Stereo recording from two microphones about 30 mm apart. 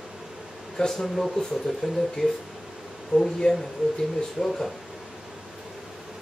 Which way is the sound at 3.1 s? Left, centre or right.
Left.